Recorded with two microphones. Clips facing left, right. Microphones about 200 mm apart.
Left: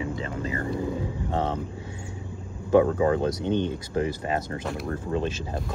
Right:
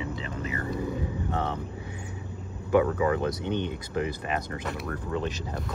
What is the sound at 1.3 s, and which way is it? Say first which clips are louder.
Speech: left 5 dB; 20° left (ahead or behind).